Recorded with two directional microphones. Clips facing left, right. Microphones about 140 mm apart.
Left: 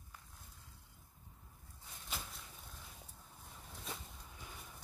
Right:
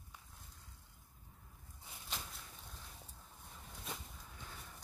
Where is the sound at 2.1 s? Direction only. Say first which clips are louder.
Left 1 dB; 5° left (ahead or behind).